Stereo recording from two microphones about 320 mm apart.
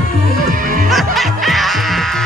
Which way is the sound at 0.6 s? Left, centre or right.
Right.